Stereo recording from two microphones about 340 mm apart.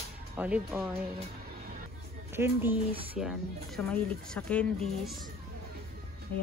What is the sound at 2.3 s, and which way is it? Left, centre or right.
Speech, centre.